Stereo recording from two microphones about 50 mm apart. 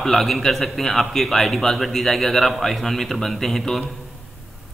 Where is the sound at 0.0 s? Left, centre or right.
Centre.